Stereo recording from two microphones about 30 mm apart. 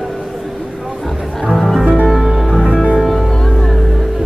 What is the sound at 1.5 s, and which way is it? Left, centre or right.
Music, centre.